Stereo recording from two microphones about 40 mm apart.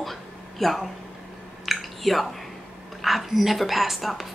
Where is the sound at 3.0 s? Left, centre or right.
Centre.